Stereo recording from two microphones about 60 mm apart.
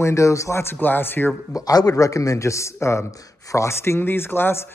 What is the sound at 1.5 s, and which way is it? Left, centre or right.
A man's voice, left.